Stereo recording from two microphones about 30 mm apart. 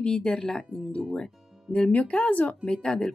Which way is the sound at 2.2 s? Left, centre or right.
Left.